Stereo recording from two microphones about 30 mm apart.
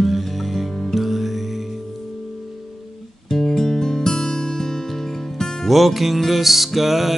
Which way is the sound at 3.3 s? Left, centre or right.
Centre.